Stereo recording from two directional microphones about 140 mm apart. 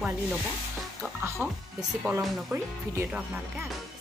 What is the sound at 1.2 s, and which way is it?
Speech, 20° right (ahead or behind).